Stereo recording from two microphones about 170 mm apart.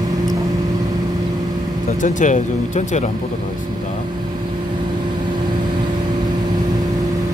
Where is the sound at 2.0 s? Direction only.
45° left (ahead or behind).